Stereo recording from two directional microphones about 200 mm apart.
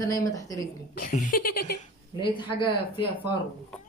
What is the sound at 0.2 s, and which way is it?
Speech, 20° left (ahead or behind).